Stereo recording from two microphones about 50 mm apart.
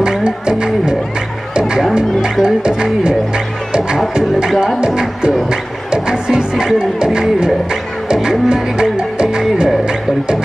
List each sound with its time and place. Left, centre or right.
0.0 s music: centre
2.4 s speech: centre
4.7 s music: centre